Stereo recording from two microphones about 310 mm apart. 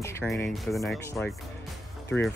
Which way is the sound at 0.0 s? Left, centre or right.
Centre.